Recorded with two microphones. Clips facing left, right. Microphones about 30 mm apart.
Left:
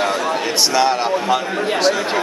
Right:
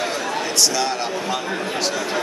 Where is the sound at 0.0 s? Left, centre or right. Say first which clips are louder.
Left 5 dB; left.